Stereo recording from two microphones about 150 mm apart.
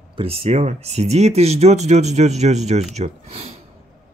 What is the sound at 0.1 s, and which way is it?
Speech, 40° right (ahead or behind).